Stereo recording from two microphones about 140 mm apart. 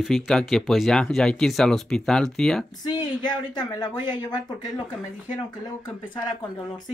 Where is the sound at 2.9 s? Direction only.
30° left (ahead or behind).